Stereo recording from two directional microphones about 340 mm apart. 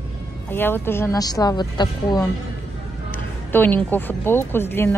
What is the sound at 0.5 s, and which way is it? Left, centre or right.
A woman's voice, centre.